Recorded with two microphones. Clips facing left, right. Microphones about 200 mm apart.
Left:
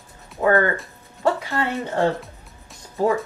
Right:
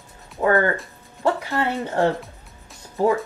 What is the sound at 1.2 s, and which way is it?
Speech, 15° right (ahead or behind).